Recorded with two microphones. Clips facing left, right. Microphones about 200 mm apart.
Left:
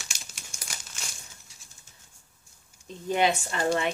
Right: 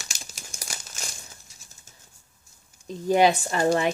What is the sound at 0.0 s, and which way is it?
Crumpling, 40° right (ahead or behind).